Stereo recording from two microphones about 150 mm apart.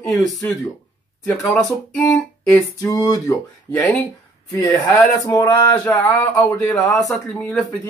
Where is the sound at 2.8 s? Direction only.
25° left (ahead or behind).